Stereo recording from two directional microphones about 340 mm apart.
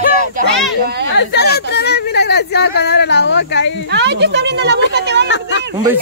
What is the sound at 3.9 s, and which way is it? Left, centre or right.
A woman's voice, right.